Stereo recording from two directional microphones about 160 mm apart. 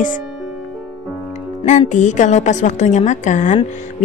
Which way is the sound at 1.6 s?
50° left (ahead or behind).